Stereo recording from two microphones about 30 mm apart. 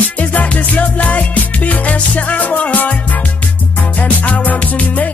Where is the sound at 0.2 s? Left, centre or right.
Left.